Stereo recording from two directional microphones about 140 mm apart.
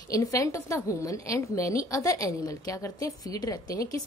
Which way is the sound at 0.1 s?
25° left (ahead or behind).